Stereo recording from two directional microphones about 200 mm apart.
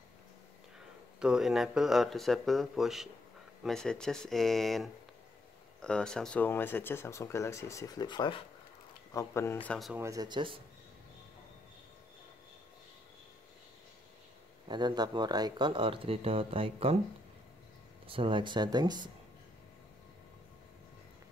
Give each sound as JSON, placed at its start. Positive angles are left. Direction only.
{"t": 0.7, "sound": "speech", "side_deg": -5}
{"t": 9.9, "sound": "speech", "side_deg": -15}
{"t": 14.7, "sound": "speech", "side_deg": -20}
{"t": 18.0, "sound": "speech", "side_deg": -25}